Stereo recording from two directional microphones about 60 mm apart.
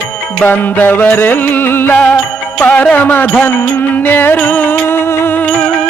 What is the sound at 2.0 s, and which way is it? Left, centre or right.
Music, left.